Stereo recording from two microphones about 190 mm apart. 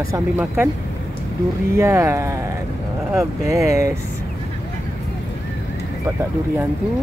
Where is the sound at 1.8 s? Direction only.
15° right (ahead or behind).